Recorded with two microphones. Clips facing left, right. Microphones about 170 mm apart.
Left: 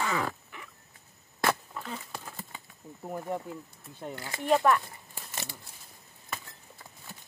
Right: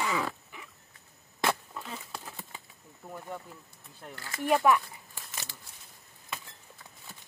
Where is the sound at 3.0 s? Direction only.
30° left (ahead or behind).